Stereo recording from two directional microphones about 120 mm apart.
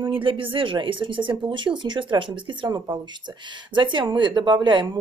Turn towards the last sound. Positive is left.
turn(degrees=-35)  # may be behind; listen again after turning